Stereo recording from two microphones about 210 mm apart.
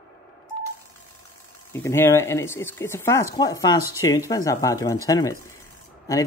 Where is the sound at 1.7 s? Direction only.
10° left (ahead or behind).